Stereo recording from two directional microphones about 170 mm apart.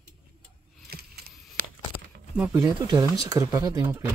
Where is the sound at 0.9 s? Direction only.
65° right (ahead or behind).